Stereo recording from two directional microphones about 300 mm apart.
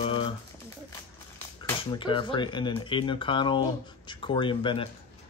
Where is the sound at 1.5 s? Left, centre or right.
Centre.